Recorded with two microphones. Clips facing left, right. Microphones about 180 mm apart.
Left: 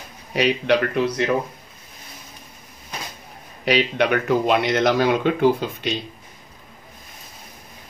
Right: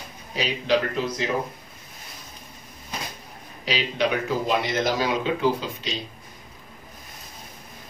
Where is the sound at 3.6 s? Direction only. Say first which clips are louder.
Left 5 dB; 60° left (ahead or behind).